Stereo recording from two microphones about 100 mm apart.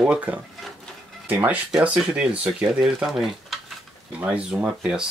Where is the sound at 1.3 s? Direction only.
15° right (ahead or behind).